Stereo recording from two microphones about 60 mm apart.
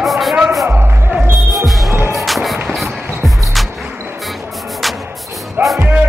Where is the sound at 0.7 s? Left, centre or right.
Right.